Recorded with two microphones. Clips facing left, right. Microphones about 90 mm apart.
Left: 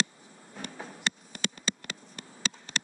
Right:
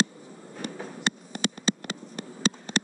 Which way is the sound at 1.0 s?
40° right (ahead or behind).